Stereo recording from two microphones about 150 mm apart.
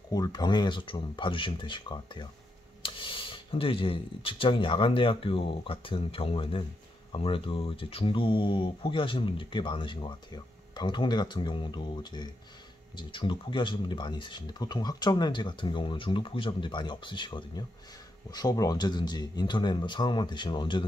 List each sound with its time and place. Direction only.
0.1 s speech: 25° left (ahead or behind)